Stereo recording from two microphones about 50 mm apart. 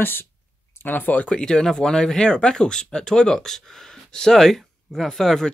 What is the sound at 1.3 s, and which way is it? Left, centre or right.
Speech, centre.